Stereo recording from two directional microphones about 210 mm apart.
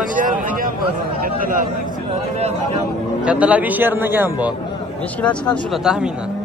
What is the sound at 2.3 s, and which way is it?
Speech, 30° right (ahead or behind).